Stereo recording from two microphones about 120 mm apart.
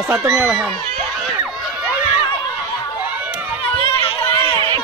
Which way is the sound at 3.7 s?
50° left (ahead or behind).